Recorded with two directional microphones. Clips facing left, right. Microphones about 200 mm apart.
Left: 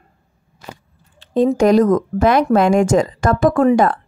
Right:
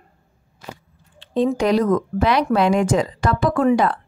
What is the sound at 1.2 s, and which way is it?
Speech, 45° left (ahead or behind).